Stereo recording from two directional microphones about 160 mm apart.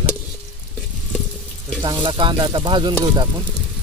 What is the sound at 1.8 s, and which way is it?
Sizzle, 25° right (ahead or behind).